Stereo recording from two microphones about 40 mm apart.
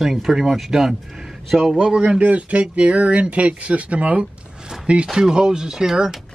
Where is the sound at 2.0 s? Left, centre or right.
Right.